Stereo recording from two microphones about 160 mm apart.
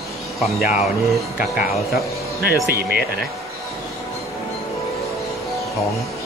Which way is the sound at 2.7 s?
75° right (ahead or behind).